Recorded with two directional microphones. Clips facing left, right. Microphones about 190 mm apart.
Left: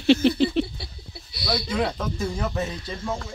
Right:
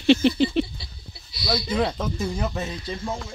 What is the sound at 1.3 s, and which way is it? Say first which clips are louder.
Speech: right 1 dB; 60° left (ahead or behind).